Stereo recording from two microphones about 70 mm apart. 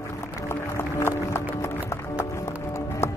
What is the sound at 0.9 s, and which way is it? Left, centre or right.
Music, left.